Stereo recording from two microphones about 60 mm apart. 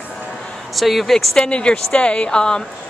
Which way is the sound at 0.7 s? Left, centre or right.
Centre.